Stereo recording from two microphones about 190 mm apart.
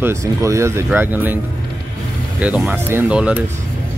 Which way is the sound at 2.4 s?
5° right (ahead or behind).